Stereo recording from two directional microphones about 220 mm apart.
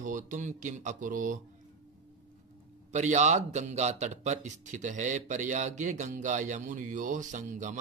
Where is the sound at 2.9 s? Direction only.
30° right (ahead or behind).